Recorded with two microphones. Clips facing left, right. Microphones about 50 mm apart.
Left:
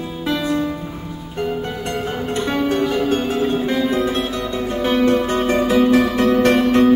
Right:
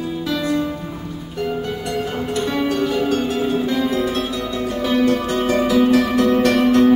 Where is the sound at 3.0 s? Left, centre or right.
Left.